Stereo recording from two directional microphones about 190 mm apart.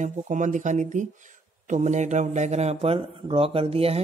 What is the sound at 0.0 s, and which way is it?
A man's voice, 40° right (ahead or behind).